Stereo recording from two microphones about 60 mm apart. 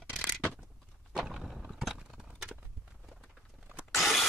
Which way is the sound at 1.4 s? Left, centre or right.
Centre.